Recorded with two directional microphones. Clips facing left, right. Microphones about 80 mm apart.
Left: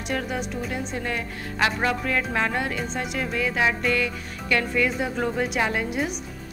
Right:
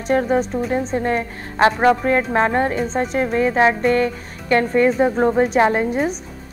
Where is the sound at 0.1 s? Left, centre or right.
Right.